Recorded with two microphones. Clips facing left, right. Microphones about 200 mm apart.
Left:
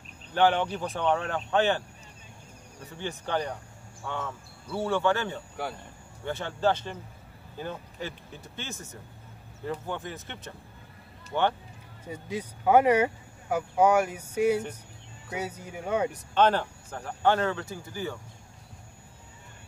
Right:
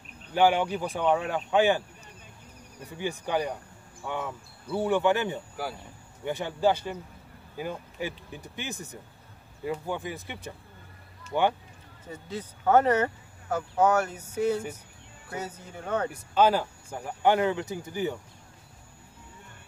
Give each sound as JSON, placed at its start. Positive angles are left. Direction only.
{"t": 0.3, "sound": "speech", "side_deg": -10}
{"t": 3.0, "sound": "speech", "side_deg": -10}
{"t": 12.1, "sound": "speech", "side_deg": 10}
{"t": 16.1, "sound": "speech", "side_deg": -5}